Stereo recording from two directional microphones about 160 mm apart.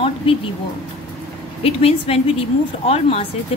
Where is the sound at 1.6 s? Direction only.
40° left (ahead or behind).